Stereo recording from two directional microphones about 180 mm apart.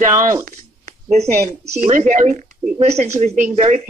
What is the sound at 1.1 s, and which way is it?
Speech, 35° right (ahead or behind).